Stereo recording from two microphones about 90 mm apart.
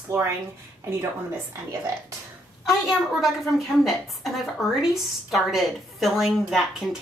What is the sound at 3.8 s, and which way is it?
A woman's voice, centre (ahead or behind).